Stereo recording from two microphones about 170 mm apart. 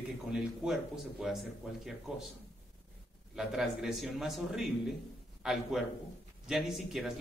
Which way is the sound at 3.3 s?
Centre (ahead or behind).